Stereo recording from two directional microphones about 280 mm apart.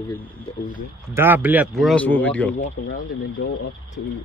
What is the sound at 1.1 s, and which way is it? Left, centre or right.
Speech, centre.